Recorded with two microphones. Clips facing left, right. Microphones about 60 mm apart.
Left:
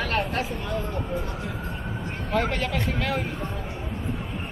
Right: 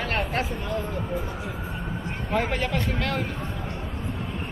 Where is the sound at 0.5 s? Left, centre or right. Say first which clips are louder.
Even; centre.